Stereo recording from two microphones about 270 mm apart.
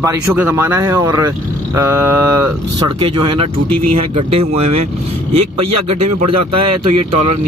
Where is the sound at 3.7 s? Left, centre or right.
Right.